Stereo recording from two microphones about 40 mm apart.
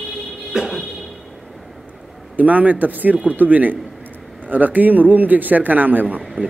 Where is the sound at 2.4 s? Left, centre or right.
Right.